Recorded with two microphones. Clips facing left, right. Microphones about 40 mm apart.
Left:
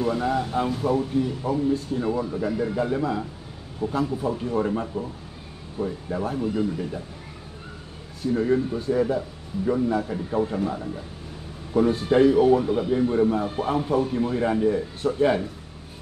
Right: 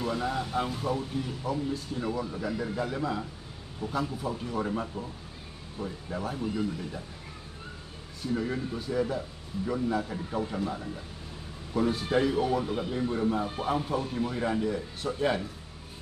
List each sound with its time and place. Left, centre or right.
0.0 s speech: centre
3.8 s a man's voice: left
4.6 s a man's voice: centre
8.3 s a man's voice: centre
11.9 s a man's voice: left